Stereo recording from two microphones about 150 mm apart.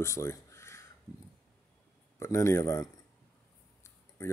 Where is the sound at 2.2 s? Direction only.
20° left (ahead or behind).